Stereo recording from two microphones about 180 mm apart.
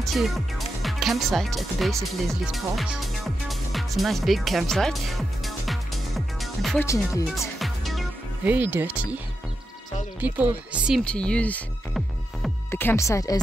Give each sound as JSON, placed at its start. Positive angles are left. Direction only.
{"t": 0.0, "sound": "speech", "side_deg": 0}
{"t": 2.0, "sound": "music", "side_deg": 0}
{"t": 10.2, "sound": "speech", "side_deg": -10}
{"t": 11.1, "sound": "music", "side_deg": 5}
{"t": 12.7, "sound": "speech", "side_deg": 15}